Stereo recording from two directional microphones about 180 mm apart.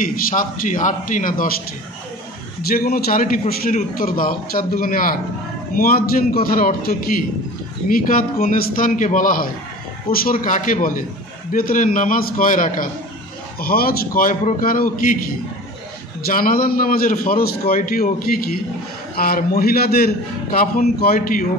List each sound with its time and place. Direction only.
0.0 s a man's voice: 45° left (ahead or behind)
2.6 s a man's voice: 55° left (ahead or behind)
16.3 s a man's voice: 55° left (ahead or behind)